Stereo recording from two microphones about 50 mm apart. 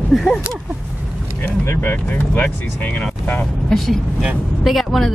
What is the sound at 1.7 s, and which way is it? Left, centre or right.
Speech, left.